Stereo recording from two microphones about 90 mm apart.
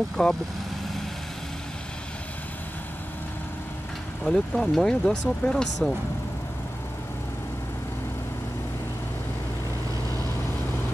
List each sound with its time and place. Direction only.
0.2 s speech: 15° left (ahead or behind)
4.2 s speech: 5° left (ahead or behind)